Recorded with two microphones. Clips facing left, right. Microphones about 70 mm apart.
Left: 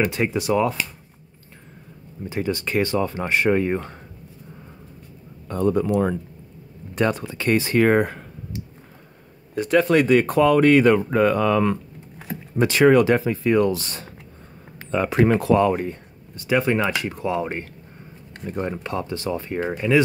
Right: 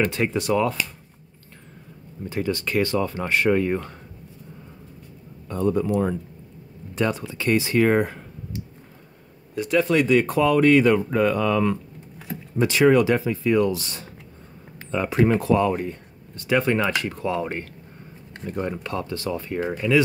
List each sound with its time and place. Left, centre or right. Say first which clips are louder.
0.0 s speech: left 1 dB; centre
2.2 s speech: left 1 dB; centre
5.5 s speech: left 2 dB; left
7.0 s speech: left 2 dB; left
9.6 s speech: left 3 dB; left
14.9 s speech: left 2 dB; left
16.3 s speech: left 1 dB; centre; by 20.0 s left